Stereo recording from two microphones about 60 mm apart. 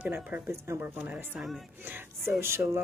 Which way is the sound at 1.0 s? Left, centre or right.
Right.